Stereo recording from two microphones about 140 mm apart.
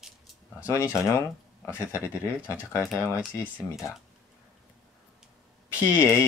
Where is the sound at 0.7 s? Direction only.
20° left (ahead or behind).